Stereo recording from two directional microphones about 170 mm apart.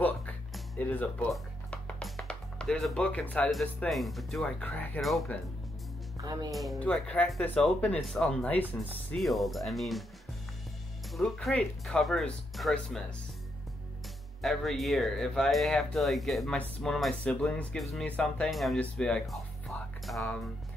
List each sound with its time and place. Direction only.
0.0 s music: 10° left (ahead or behind)
3.3 s speech: 5° left (ahead or behind)
6.2 s speech: 20° right (ahead or behind)
6.5 s speech: centre (ahead or behind)
11.1 s speech: centre (ahead or behind)
14.4 s speech: centre (ahead or behind)
19.7 s music: 10° left (ahead or behind)
20.1 s speech: 5° left (ahead or behind)